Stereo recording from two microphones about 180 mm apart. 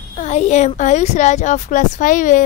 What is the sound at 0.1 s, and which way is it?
Speech, 40° left (ahead or behind).